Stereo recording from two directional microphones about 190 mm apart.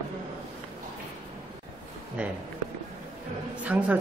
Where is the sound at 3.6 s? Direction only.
5° right (ahead or behind).